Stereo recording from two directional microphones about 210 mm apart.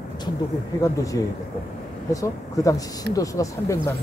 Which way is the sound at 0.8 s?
15° left (ahead or behind).